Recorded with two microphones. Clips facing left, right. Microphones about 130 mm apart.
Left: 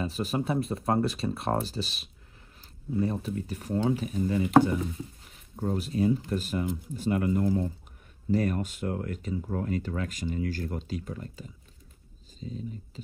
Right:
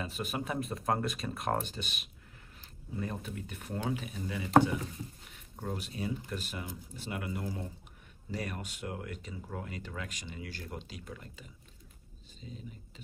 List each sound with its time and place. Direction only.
0.0 s speech: 35° left (ahead or behind)